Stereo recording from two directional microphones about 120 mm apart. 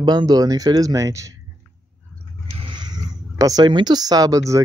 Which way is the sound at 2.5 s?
45° right (ahead or behind).